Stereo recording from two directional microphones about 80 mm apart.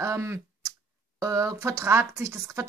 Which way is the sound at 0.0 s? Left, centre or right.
Right.